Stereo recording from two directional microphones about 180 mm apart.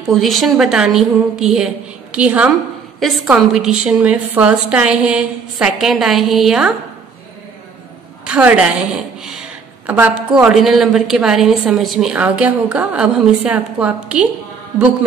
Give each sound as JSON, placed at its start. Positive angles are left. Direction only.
{"t": 0.0, "sound": "a woman's voice", "side_deg": 0}
{"t": 8.3, "sound": "a woman's voice", "side_deg": -5}